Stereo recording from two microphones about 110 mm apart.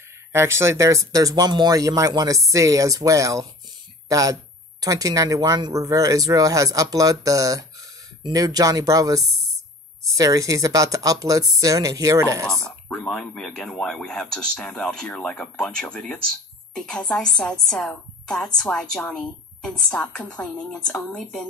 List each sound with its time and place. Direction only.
0.3 s speech: 25° right (ahead or behind)
12.8 s a woman's voice: 10° left (ahead or behind)